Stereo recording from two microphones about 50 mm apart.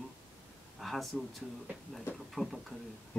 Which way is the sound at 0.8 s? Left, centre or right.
Centre.